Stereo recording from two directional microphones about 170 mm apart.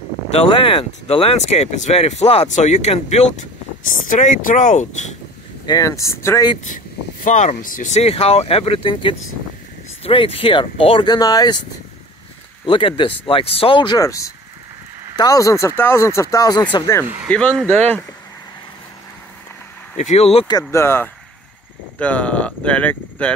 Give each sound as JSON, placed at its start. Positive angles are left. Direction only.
{"t": 0.3, "sound": "speech", "side_deg": 30}
{"t": 5.7, "sound": "speech", "side_deg": 20}
{"t": 7.2, "sound": "speech", "side_deg": 45}
{"t": 12.6, "sound": "speech", "side_deg": 30}
{"t": 17.0, "sound": "speech", "side_deg": -10}
{"t": 17.3, "sound": "speech", "side_deg": 5}
{"t": 20.0, "sound": "speech", "side_deg": 40}
{"t": 20.7, "sound": "speech", "side_deg": 15}